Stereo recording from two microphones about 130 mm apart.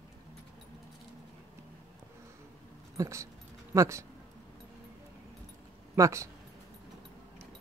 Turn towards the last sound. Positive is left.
turn(degrees=-25)  # may be behind; listen again after turning